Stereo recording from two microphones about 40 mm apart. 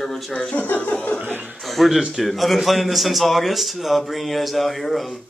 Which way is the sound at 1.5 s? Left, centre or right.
Centre.